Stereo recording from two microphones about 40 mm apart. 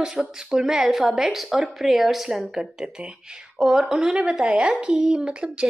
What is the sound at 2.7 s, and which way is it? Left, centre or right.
Speech, centre.